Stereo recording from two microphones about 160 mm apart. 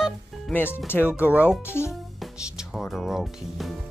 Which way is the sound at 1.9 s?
Centre (ahead or behind).